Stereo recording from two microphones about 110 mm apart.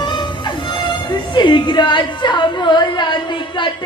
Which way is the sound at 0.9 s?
45° left (ahead or behind).